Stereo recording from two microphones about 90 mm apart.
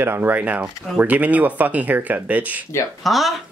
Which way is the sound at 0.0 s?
25° right (ahead or behind).